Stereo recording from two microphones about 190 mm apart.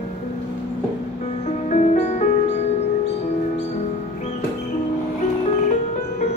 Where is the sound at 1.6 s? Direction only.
35° left (ahead or behind).